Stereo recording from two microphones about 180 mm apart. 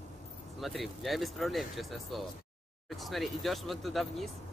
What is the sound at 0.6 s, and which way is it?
Speech, centre (ahead or behind).